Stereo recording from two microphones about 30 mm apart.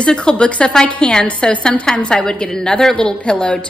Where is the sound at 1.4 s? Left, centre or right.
Left.